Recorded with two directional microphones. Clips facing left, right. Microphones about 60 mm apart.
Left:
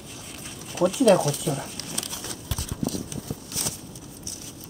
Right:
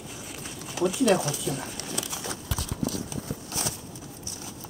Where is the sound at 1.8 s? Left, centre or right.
Centre.